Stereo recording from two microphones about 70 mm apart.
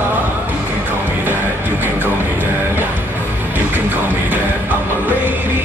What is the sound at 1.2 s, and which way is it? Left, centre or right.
Music, right.